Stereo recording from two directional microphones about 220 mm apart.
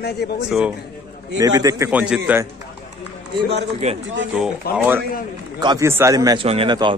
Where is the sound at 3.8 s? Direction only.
30° right (ahead or behind).